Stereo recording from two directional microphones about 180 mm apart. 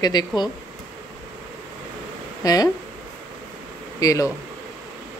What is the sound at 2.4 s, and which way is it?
Speech, 20° left (ahead or behind).